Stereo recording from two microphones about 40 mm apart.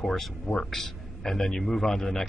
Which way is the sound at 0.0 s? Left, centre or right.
Centre.